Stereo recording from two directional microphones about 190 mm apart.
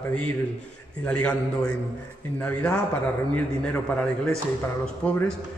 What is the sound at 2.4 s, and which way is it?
A man's voice, 5° left (ahead or behind).